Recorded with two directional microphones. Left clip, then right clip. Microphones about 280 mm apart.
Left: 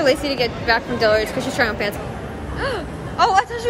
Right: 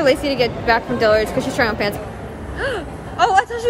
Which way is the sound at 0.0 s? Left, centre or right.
Centre.